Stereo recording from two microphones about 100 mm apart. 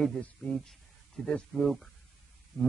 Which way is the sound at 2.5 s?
30° left (ahead or behind).